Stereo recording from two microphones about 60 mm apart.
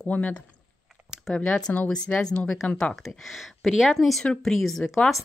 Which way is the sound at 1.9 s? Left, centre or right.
Centre.